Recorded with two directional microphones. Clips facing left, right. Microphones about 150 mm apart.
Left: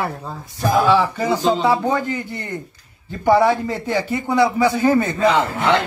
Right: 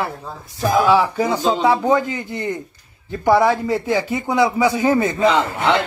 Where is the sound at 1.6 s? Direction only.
15° right (ahead or behind).